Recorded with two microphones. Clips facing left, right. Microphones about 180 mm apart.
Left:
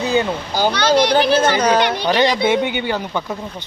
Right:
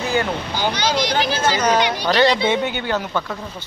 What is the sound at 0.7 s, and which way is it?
Speech, 60° left (ahead or behind).